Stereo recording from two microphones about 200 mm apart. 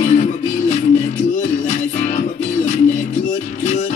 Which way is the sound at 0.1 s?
35° left (ahead or behind).